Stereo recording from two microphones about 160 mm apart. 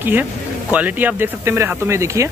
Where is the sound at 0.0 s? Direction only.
10° right (ahead or behind).